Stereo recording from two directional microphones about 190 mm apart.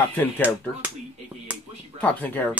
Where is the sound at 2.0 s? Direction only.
10° left (ahead or behind).